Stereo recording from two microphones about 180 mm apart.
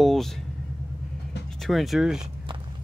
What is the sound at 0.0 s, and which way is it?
Vehicle, centre (ahead or behind).